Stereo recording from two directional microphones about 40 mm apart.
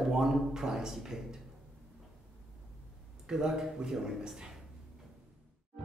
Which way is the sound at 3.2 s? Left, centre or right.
Centre.